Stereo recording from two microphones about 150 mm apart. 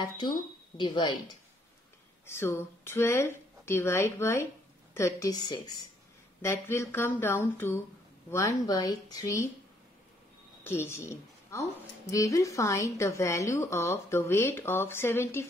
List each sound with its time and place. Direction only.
0.7 s speech: 30° left (ahead or behind)
2.2 s a woman's voice: 15° left (ahead or behind)
10.6 s a woman's voice: 15° left (ahead or behind)